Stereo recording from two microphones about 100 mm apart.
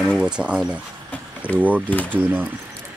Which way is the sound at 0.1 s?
10° right (ahead or behind).